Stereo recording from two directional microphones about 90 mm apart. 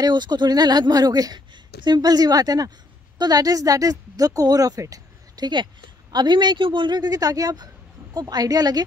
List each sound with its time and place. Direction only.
0.0 s a woman's voice: 55° right (ahead or behind)